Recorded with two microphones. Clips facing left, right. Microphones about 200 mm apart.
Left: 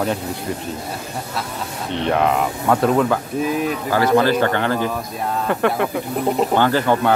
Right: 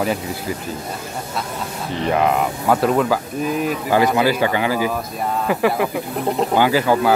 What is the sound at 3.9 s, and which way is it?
A man's voice, 15° right (ahead or behind).